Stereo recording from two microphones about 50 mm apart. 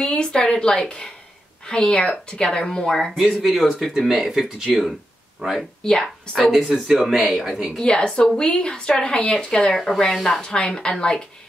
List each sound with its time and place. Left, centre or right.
0.0 s a woman's voice: centre
3.1 s speech: centre
7.8 s a woman's voice: centre
10.4 s a woman's voice: centre